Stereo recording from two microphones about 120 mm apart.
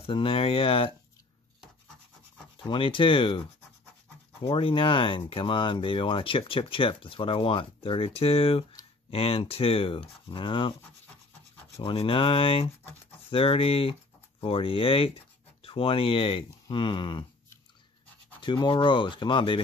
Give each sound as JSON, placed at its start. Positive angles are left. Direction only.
{"t": 0.0, "sound": "speech", "side_deg": 50}
{"t": 2.6, "sound": "speech", "side_deg": 45}
{"t": 4.5, "sound": "speech", "side_deg": 50}
{"t": 11.7, "sound": "speech", "side_deg": 50}
{"t": 18.4, "sound": "speech", "side_deg": 40}